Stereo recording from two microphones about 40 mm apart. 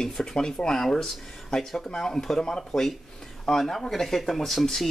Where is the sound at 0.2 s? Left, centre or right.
Centre.